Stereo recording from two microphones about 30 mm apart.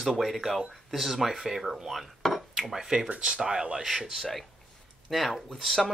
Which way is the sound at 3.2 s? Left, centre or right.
Right.